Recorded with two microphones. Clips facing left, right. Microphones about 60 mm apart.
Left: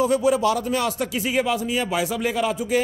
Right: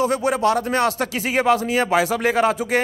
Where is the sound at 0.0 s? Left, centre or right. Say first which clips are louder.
Even; right.